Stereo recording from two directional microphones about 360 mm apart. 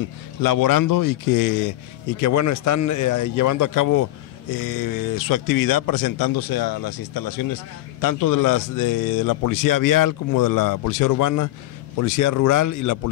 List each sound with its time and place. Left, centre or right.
0.4 s a man's voice: left